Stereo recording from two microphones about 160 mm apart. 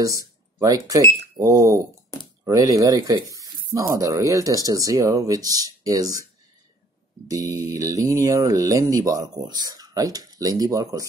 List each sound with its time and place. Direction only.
0.6 s speech: 20° right (ahead or behind)
7.2 s speech: 20° right (ahead or behind)